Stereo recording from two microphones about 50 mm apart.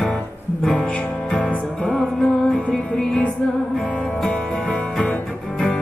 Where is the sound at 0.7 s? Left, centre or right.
Centre.